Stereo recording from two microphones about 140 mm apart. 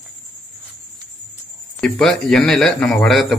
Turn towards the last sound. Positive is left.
turn(degrees=0)  # may be behind; listen again after turning